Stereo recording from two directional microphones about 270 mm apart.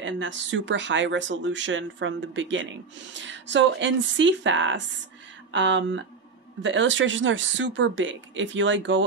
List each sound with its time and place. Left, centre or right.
0.0 s speech: right